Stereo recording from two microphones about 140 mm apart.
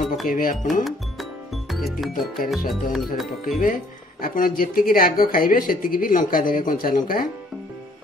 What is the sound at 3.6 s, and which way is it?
Speech, 85° left.